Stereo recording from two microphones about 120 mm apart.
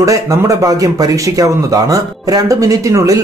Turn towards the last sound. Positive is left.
turn(degrees=-25)  # may be behind; listen again after turning